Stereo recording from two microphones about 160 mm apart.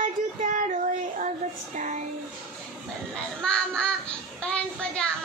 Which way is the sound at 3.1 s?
5° left (ahead or behind).